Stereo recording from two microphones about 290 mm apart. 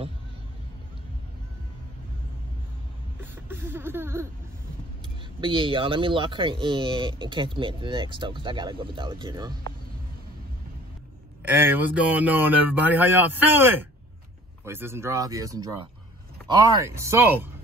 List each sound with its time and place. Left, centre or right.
3.2 s a sound: centre
5.4 s speech: centre
11.4 s speech: centre